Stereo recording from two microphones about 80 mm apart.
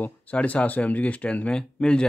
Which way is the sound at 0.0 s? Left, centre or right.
Centre.